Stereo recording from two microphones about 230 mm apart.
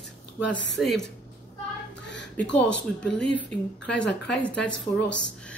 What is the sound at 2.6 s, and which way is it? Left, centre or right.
Speech, centre.